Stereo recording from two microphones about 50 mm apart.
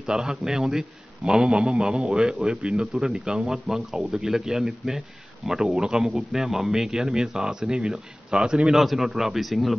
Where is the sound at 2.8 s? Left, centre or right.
Centre.